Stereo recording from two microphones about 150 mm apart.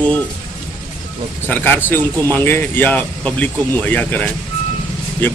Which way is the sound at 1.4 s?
15° left (ahead or behind).